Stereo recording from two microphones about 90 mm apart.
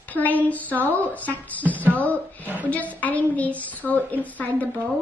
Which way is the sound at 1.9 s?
15° left (ahead or behind).